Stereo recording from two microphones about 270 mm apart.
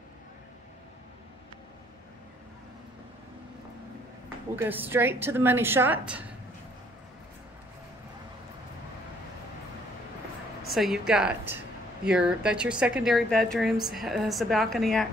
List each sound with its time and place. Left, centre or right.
4.6 s a woman's voice: centre
10.7 s a woman's voice: centre